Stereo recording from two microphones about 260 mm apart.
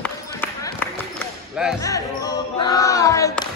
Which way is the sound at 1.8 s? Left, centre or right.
Centre.